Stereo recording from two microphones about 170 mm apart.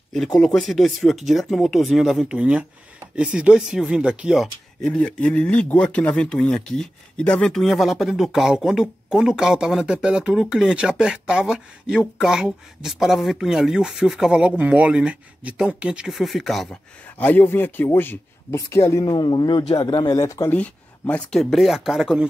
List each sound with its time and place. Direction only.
0.4 s speech: 5° left (ahead or behind)
17.2 s a man's voice: 10° left (ahead or behind)